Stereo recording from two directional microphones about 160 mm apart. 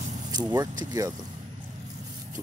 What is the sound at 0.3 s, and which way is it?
Speech, 25° right (ahead or behind).